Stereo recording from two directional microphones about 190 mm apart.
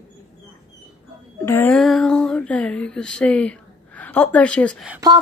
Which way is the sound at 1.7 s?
Centre (ahead or behind).